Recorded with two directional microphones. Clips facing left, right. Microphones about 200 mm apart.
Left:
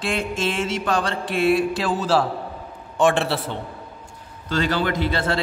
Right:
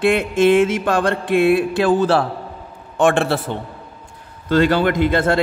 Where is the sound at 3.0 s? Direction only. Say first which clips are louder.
Right 3 dB; 50° right (ahead or behind).